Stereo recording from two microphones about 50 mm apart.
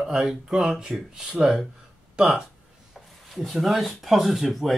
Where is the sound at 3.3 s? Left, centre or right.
Centre.